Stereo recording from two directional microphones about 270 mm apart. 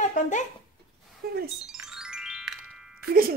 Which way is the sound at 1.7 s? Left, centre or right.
Centre.